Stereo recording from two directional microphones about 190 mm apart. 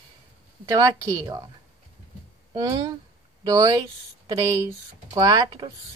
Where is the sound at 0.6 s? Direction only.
20° right (ahead or behind).